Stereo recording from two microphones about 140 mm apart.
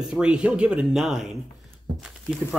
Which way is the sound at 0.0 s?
5° right (ahead or behind).